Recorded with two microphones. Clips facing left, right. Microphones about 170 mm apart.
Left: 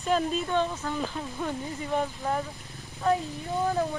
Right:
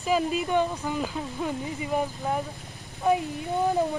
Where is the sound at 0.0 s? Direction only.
5° right (ahead or behind).